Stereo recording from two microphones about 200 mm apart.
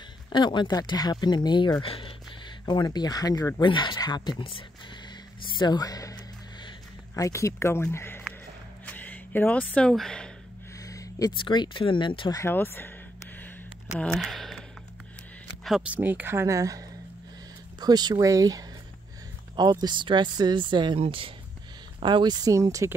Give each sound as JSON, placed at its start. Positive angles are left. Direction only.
{"t": 0.3, "sound": "speech", "side_deg": 20}
{"t": 5.5, "sound": "music", "side_deg": 20}
{"t": 7.2, "sound": "speech", "side_deg": 15}
{"t": 10.8, "sound": "speech", "side_deg": 15}
{"t": 13.9, "sound": "speech", "side_deg": 0}
{"t": 15.6, "sound": "speech", "side_deg": -5}